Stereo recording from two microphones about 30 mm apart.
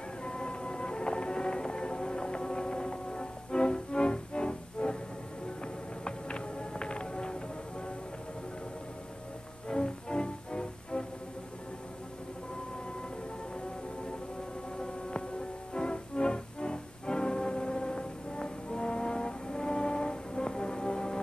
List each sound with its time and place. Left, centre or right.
0.2 s music: left
6.0 s music: left
9.7 s music: left
14.8 s siren: left
15.7 s music: left